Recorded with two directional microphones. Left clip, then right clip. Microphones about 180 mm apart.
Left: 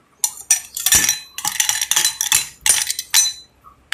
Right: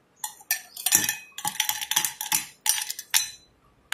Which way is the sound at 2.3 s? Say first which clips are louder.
Left 6 dB; 5° right (ahead or behind).